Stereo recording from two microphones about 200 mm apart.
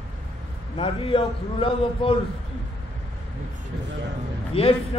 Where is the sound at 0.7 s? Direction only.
25° left (ahead or behind).